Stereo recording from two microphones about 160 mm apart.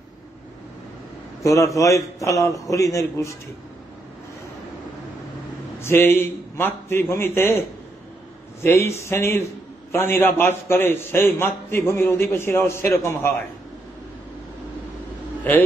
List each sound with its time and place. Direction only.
1.4 s a man's voice: 20° left (ahead or behind)
5.8 s a man's voice: 15° left (ahead or behind)
8.6 s a man's voice: 15° left (ahead or behind)